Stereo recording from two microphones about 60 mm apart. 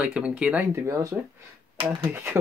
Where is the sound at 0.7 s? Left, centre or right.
Right.